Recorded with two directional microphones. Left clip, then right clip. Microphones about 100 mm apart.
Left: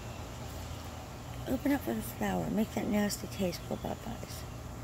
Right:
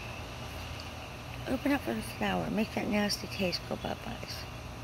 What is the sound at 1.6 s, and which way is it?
Speech, 45° left (ahead or behind).